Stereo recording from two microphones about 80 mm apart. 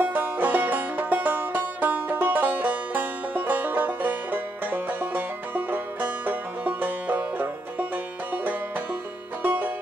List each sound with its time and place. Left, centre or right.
0.0 s music: right
9.4 s music: right